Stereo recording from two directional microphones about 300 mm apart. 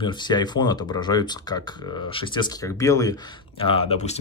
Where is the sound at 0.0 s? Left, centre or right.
Centre.